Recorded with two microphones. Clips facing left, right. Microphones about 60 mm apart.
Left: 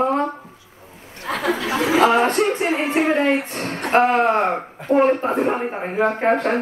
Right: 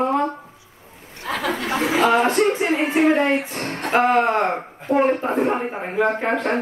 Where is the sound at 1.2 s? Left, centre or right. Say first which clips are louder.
Left 2 dB; left.